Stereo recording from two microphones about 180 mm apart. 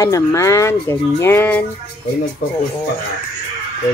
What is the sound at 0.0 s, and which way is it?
Speech, 15° left (ahead or behind).